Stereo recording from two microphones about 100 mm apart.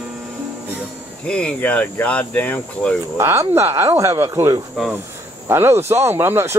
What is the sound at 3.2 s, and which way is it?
Speech, 25° right (ahead or behind).